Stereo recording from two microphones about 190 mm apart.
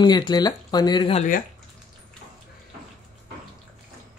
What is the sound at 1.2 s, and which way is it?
Speech, 45° left (ahead or behind).